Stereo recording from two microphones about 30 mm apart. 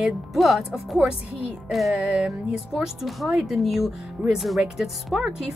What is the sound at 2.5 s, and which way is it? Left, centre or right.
Speech, right.